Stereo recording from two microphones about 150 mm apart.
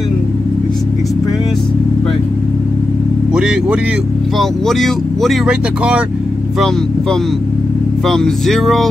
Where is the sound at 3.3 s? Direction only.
5° right (ahead or behind).